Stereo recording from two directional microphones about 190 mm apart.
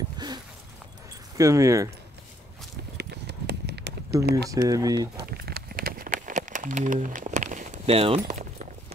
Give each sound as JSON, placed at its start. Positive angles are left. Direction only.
{"t": 0.2, "sound": "a sound", "side_deg": -20}
{"t": 1.3, "sound": "speech", "side_deg": -15}
{"t": 3.0, "sound": "clip-clop", "side_deg": -60}
{"t": 4.2, "sound": "speech", "side_deg": -15}
{"t": 5.1, "sound": "run", "side_deg": -55}